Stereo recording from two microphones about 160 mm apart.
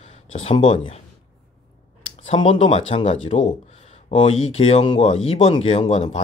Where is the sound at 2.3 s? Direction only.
35° left (ahead or behind).